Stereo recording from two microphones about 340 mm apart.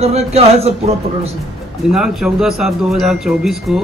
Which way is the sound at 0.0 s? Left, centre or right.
Centre.